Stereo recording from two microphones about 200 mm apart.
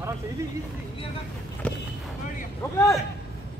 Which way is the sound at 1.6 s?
5° left (ahead or behind).